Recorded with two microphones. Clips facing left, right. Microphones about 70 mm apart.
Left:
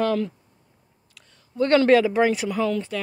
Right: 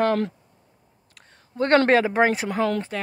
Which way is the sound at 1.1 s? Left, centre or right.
Right.